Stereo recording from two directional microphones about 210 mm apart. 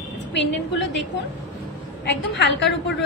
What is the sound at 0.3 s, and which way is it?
Speech, 60° left (ahead or behind).